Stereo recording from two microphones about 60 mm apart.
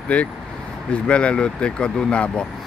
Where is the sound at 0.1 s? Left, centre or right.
Left.